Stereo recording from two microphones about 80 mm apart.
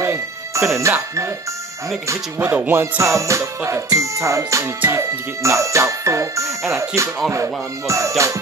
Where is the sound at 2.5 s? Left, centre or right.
Right.